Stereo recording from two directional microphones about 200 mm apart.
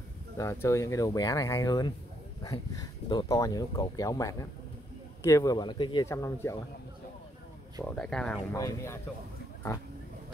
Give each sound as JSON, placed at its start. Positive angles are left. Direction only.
{"t": 0.4, "sound": "speech", "side_deg": 15}
{"t": 7.8, "sound": "speech", "side_deg": 5}